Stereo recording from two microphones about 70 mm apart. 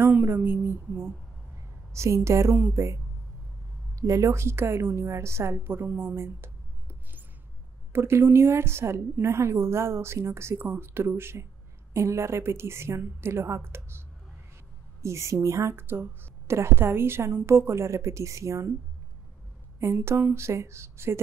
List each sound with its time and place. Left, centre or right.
0.0 s speech: right
2.0 s a woman's voice: right
4.0 s a woman's voice: right
15.7 s a woman's voice: right
20.3 s a woman's voice: right